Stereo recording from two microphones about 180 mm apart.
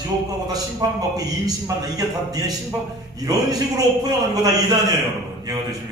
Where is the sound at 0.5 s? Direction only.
20° right (ahead or behind).